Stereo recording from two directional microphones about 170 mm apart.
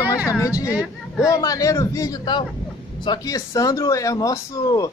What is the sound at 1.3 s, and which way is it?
Speech, 20° left (ahead or behind).